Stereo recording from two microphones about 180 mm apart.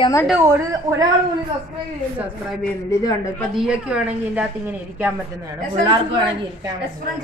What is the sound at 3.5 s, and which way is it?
Speech, 5° right (ahead or behind).